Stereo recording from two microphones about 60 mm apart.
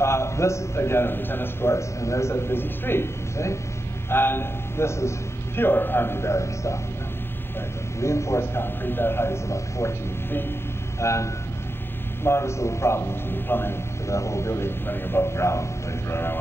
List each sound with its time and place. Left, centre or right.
0.0 s a man's voice: left
5.6 s a man's voice: left
8.0 s a man's voice: left
11.0 s a man's voice: left
14.0 s a man's voice: left